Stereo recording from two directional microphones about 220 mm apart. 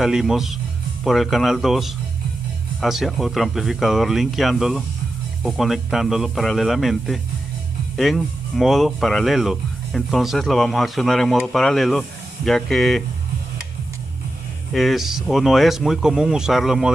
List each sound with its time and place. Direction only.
0.0 s speech: centre (ahead or behind)
14.7 s speech: centre (ahead or behind)